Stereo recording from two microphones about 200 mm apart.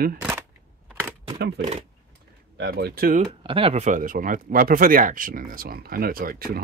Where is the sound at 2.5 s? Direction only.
55° right (ahead or behind).